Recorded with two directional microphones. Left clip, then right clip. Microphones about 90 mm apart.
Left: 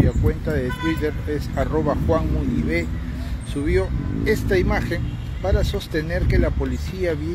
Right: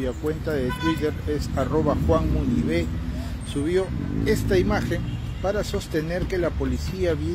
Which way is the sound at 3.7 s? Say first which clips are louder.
Left 2 dB; 35° right (ahead or behind).